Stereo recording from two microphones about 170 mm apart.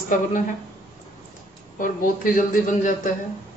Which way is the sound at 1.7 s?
55° left (ahead or behind).